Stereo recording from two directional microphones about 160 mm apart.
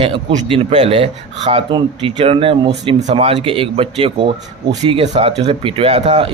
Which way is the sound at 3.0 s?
45° right (ahead or behind).